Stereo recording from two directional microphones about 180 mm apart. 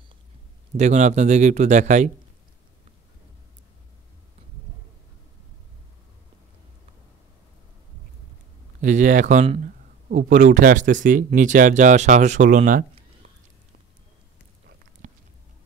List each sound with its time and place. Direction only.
0.7 s speech: 40° right (ahead or behind)
8.8 s speech: 45° right (ahead or behind)
15.0 s a sound: 40° right (ahead or behind)